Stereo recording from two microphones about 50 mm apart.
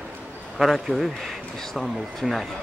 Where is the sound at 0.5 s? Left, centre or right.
Centre.